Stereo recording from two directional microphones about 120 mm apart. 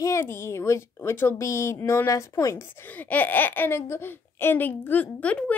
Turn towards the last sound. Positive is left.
turn(degrees=10)  # may be behind; listen again after turning